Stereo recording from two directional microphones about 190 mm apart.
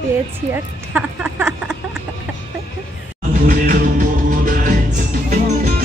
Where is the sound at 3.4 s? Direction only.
45° right (ahead or behind).